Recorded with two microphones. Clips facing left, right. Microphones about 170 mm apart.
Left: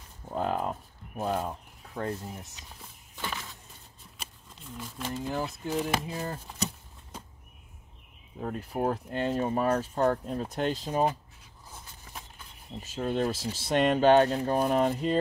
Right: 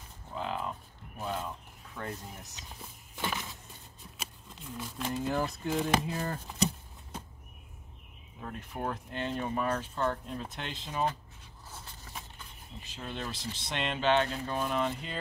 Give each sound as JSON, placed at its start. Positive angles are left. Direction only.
{"t": 0.3, "sound": "a sound", "side_deg": 45}
{"t": 2.0, "sound": "speech", "side_deg": 40}
{"t": 3.2, "sound": "a sound", "side_deg": -20}
{"t": 4.6, "sound": "speech", "side_deg": -5}
{"t": 5.2, "sound": "speech", "side_deg": 10}
{"t": 5.7, "sound": "speech", "side_deg": 0}
{"t": 6.1, "sound": "speech", "side_deg": 15}
{"t": 8.4, "sound": "speech", "side_deg": 35}
{"t": 12.8, "sound": "speech", "side_deg": 45}
{"t": 13.4, "sound": "speech", "side_deg": 5}
{"t": 13.7, "sound": "speech", "side_deg": 45}